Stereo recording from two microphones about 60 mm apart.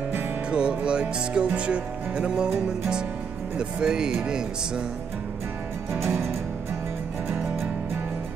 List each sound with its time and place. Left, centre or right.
0.5 s music: centre
5.9 s music: right